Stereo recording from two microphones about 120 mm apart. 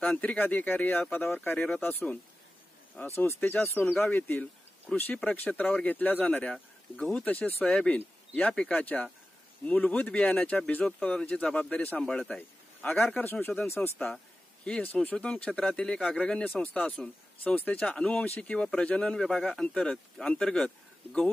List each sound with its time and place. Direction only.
0.0 s a man's voice: 10° left (ahead or behind)
12.8 s a man's voice: 20° left (ahead or behind)